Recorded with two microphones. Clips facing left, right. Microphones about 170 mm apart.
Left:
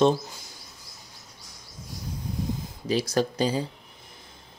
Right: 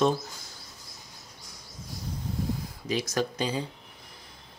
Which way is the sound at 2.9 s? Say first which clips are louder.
Left 4 dB; 35° left (ahead or behind).